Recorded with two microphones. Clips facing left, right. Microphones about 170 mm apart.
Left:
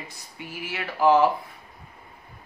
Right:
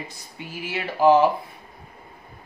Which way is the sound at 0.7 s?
20° right (ahead or behind).